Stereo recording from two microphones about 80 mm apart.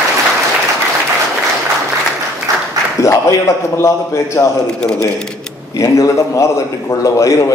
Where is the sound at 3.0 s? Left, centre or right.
Left.